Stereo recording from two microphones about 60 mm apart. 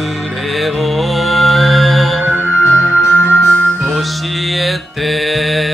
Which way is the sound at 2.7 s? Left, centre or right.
Left.